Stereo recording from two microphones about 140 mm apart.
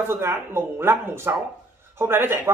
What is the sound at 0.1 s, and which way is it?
A woman's voice, 20° right (ahead or behind).